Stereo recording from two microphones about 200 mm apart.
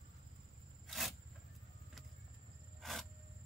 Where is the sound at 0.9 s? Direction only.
Centre (ahead or behind).